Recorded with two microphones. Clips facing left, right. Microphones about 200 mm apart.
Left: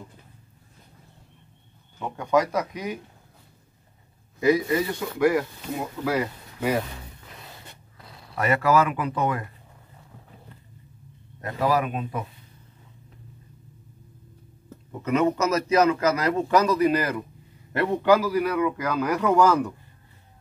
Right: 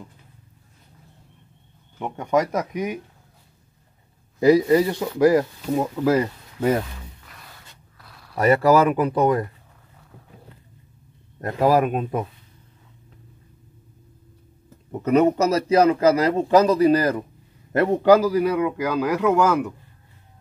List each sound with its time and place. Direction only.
2.0 s speech: 20° right (ahead or behind)
4.4 s a man's voice: 35° right (ahead or behind)
8.0 s zipper: 20° left (ahead or behind)
8.4 s a man's voice: 35° right (ahead or behind)
11.4 s a man's voice: 45° right (ahead or behind)
14.9 s a man's voice: 40° right (ahead or behind)
18.9 s speech: 10° right (ahead or behind)